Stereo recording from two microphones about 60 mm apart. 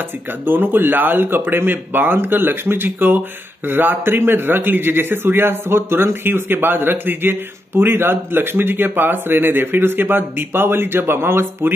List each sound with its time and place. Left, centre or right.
0.5 s a man's voice: right